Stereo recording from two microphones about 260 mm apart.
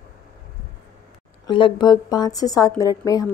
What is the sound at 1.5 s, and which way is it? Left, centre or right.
A woman's voice, centre.